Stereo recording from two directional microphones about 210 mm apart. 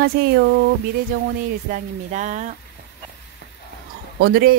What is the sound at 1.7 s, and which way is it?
Speech, 35° right (ahead or behind).